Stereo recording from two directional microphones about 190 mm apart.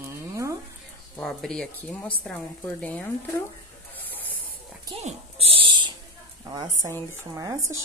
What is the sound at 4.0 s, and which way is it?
Spray, 10° left (ahead or behind).